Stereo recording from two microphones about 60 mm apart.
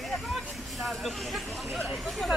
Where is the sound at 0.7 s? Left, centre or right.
Centre.